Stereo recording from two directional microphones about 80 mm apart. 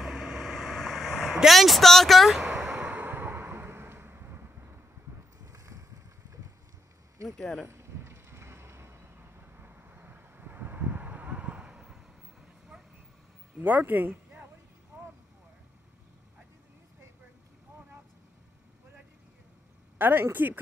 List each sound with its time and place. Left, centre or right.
0.0 s vehicle: centre
2.9 s a sound: right
5.4 s boat: right
7.2 s speech: centre
7.6 s a sound: right; by 12.8 s centre
13.6 s speech: right
20.0 s a woman's voice: right